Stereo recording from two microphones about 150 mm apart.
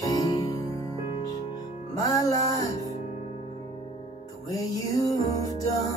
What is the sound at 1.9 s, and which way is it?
Music, 25° left (ahead or behind).